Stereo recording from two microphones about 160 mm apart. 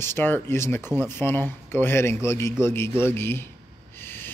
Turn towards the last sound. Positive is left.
turn(degrees=15)  # may be behind; listen again after turning